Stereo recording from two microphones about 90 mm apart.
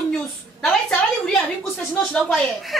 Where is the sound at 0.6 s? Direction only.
5° left (ahead or behind).